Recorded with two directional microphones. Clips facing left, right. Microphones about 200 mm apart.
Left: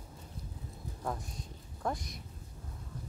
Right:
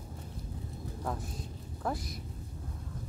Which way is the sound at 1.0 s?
Centre (ahead or behind).